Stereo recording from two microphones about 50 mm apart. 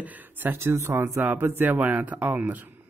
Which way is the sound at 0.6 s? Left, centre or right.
Right.